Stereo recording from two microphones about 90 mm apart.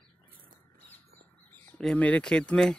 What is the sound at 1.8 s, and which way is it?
Speech, 10° left (ahead or behind).